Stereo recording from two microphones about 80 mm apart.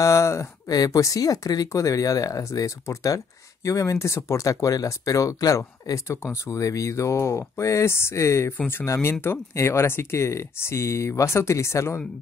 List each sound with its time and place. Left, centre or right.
0.0 s speech: left
0.7 s speech: left